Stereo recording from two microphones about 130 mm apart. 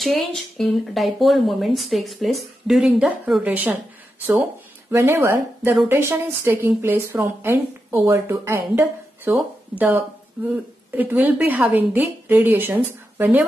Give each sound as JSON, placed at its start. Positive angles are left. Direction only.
{"t": 0.0, "sound": "speech", "side_deg": 0}
{"t": 4.9, "sound": "a woman's voice", "side_deg": -20}